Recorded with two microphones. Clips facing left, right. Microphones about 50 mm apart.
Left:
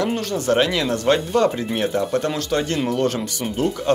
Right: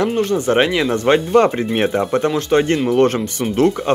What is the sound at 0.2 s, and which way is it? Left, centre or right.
Speech, right.